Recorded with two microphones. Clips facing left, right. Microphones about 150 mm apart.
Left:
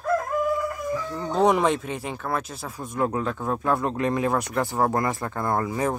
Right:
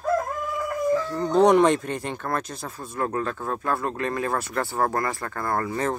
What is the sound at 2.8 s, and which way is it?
Speech, 15° left (ahead or behind).